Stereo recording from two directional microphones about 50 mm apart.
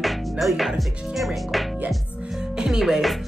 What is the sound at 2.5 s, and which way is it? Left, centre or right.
Speech, centre.